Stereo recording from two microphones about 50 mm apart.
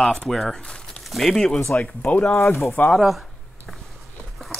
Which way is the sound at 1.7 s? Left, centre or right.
Left.